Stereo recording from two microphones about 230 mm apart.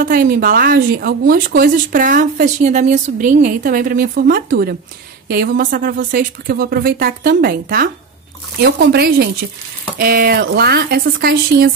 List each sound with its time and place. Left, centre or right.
0.0 s speech: right